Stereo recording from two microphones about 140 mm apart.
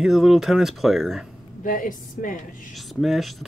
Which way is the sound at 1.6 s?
70° left (ahead or behind).